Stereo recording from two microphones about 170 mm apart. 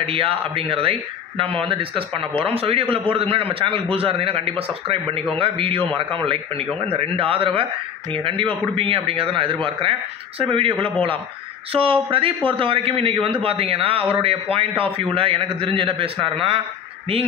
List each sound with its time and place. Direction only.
0.0 s a man's voice: 35° right (ahead or behind)